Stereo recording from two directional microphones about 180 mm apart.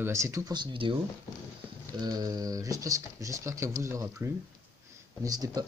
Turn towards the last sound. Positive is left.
turn(degrees=-20)  # may be behind; listen again after turning